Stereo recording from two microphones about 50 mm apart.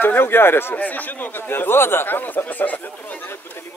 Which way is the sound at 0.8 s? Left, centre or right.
Left.